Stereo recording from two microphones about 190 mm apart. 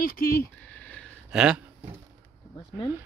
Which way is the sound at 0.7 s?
5° left (ahead or behind).